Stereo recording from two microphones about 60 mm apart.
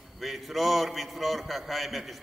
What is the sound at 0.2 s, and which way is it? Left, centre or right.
A man's voice, centre.